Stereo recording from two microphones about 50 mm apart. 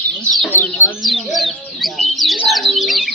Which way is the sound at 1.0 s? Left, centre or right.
Centre.